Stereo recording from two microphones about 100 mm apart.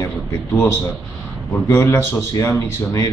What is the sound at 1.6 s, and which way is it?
A man's voice, 30° left (ahead or behind).